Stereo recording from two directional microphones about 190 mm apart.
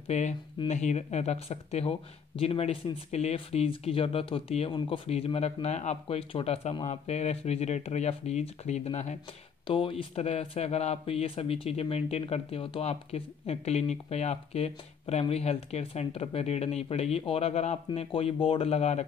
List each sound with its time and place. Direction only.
0.1 s speech: 35° left (ahead or behind)